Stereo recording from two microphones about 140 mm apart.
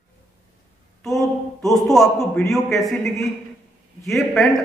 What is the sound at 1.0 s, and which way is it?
A man's voice, centre (ahead or behind).